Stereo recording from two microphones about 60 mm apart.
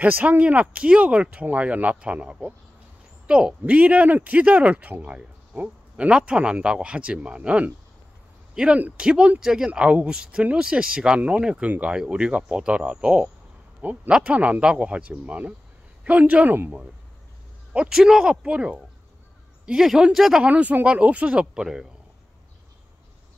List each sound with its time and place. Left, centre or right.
0.0 s speech: right
17.7 s speech: centre
20.4 s speech: right